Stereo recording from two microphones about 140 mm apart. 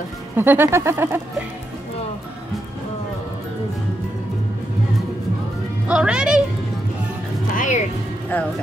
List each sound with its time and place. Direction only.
0.4 s speech: 15° right (ahead or behind)
5.9 s speech: 5° right (ahead or behind)
7.5 s music: 65° left (ahead or behind)